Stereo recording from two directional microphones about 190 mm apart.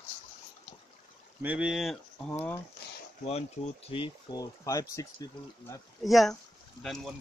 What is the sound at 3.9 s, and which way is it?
Speech, 25° left (ahead or behind).